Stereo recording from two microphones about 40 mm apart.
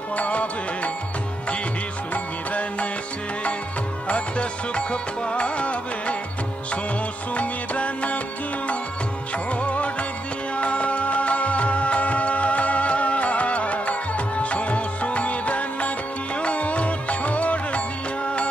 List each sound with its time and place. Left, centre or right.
0.1 s music: left
4.1 s music: left
7.3 s music: left
9.5 s music: left